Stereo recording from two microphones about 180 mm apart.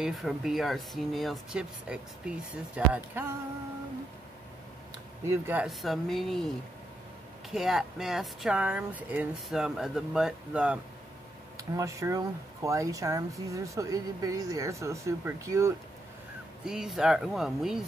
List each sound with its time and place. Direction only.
0.0 s speech: centre (ahead or behind)
5.3 s speech: 10° right (ahead or behind)
7.5 s speech: centre (ahead or behind)
11.5 s speech: 15° right (ahead or behind)
16.6 s speech: 5° right (ahead or behind)